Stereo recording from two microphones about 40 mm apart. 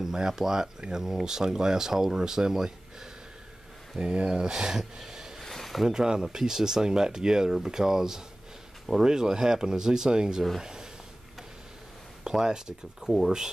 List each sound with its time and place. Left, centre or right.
0.0 s speech: centre
4.0 s speech: right
5.4 s a sound: centre
5.9 s speech: centre
12.3 s speech: centre